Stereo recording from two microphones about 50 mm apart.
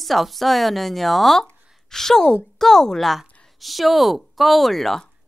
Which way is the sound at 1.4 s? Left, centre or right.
Centre.